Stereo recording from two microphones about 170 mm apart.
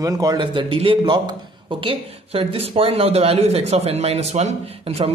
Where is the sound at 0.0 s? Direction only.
20° right (ahead or behind).